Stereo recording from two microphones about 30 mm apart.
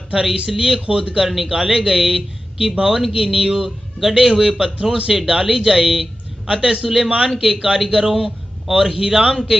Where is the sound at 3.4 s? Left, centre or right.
Right.